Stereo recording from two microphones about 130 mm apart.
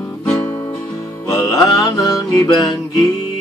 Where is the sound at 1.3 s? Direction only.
25° left (ahead or behind).